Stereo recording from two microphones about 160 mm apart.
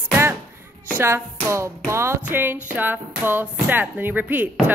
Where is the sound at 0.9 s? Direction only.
15° right (ahead or behind).